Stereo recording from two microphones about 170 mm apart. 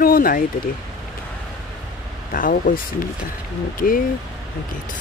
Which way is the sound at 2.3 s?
55° left (ahead or behind).